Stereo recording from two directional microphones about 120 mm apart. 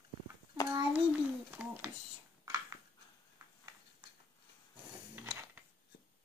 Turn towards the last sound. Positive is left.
turn(degrees=-20)  # may be behind; listen again after turning